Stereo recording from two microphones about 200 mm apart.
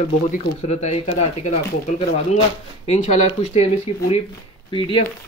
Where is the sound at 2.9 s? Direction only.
35° left (ahead or behind).